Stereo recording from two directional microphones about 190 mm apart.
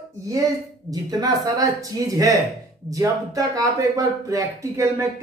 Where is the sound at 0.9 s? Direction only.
20° right (ahead or behind).